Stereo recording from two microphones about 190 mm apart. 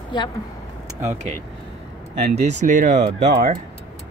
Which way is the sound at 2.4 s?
40° right (ahead or behind).